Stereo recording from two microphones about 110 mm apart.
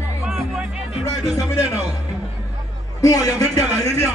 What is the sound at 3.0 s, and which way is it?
Speech, 35° left (ahead or behind).